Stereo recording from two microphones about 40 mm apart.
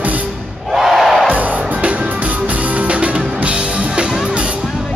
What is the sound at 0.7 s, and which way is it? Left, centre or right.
Crowd, centre.